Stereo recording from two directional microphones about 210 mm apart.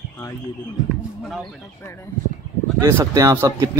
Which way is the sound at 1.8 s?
10° left (ahead or behind).